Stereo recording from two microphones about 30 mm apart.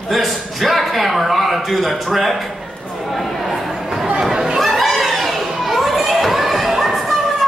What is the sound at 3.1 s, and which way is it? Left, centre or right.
Chatter, centre.